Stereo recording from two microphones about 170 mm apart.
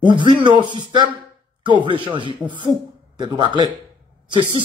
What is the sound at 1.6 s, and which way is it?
Speech, 30° right (ahead or behind).